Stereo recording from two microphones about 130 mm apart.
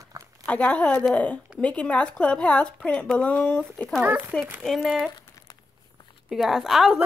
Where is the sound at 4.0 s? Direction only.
15° right (ahead or behind).